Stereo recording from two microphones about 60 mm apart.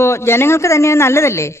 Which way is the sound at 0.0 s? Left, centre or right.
Left.